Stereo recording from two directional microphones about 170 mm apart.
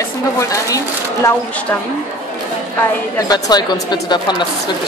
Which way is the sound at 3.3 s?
25° left (ahead or behind).